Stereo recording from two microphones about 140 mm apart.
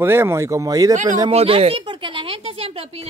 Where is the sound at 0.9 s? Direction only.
60° right (ahead or behind).